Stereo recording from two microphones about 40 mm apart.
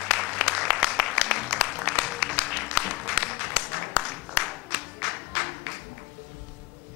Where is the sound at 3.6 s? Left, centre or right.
Centre.